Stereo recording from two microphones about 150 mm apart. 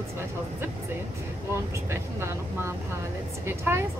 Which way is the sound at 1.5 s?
20° right (ahead or behind).